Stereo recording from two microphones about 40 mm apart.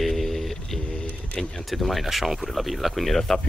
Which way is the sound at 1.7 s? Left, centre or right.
Centre.